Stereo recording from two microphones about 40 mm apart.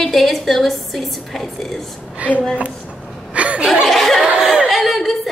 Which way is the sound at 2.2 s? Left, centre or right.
Right.